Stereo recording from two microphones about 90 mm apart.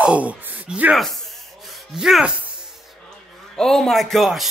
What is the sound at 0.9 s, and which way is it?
Speech, centre (ahead or behind).